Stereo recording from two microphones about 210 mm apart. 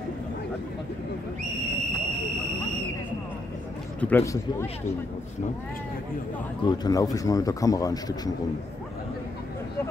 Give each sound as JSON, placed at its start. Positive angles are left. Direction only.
{"t": 4.0, "sound": "speech", "side_deg": 10}
{"t": 6.7, "sound": "speech", "side_deg": 20}